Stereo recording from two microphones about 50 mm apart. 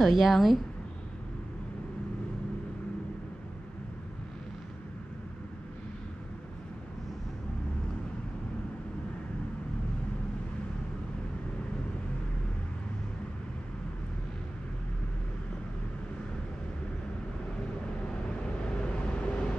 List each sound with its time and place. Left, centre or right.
0.0 s a woman's voice: centre
18.8 s vehicle: left